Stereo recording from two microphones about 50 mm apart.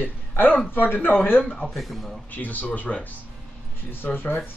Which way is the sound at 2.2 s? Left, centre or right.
Left.